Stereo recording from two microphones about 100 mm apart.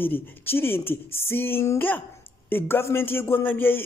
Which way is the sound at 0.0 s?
20° left (ahead or behind).